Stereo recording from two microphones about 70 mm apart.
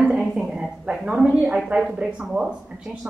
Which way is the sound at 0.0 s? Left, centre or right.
Centre.